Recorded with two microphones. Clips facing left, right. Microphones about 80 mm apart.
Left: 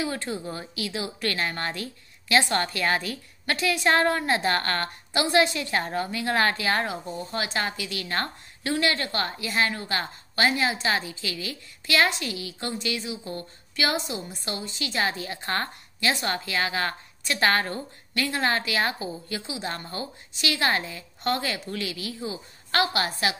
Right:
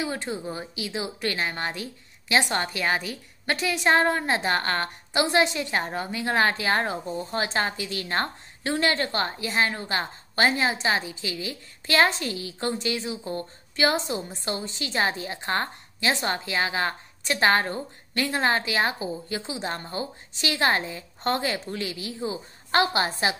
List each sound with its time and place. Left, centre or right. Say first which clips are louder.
0.0 s speech: even; right